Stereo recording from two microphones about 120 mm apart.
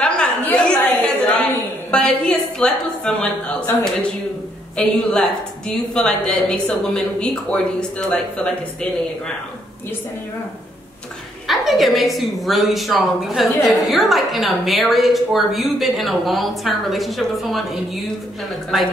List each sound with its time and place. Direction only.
0.0 s a sound: 10° left (ahead or behind)
1.9 s a woman's voice: 10° left (ahead or behind)
11.4 s a woman's voice: centre (ahead or behind)